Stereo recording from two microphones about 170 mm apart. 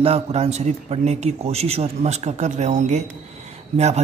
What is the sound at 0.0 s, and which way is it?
A man's voice, 35° right (ahead or behind).